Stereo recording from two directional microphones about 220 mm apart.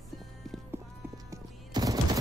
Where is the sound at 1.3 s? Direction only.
15° right (ahead or behind).